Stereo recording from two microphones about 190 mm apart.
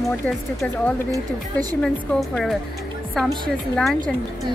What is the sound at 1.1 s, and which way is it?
Speech, 20° right (ahead or behind).